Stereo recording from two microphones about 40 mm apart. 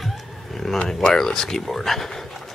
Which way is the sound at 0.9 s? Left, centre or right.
Centre.